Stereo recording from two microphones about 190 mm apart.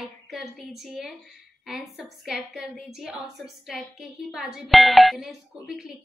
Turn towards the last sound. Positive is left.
turn(degrees=-5)  # may be behind; listen again after turning